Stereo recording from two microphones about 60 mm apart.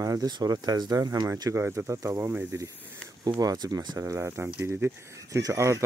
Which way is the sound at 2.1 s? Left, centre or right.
Right.